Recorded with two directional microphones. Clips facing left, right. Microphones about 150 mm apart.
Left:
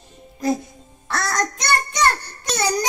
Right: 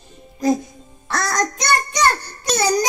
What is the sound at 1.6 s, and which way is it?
Child singing, 35° right (ahead or behind).